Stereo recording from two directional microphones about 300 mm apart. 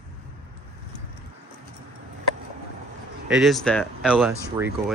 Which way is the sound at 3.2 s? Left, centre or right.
Centre.